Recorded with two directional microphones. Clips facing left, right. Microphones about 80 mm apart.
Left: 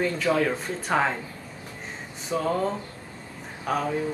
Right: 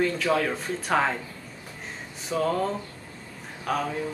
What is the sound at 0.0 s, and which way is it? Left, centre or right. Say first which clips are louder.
Speech: left 1 dB; centre.